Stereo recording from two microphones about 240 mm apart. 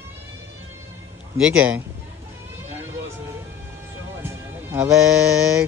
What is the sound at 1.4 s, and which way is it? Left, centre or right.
Speech, centre.